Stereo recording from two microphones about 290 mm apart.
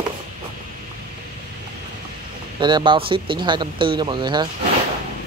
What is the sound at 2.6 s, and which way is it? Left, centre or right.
Speech, centre.